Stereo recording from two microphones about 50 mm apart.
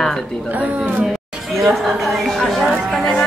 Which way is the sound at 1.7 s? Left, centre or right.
Centre.